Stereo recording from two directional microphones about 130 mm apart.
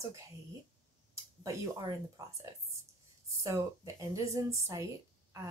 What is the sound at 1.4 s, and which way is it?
Speech, 25° right (ahead or behind).